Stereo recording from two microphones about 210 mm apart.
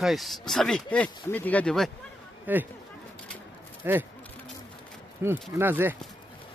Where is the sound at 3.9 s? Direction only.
10° right (ahead or behind).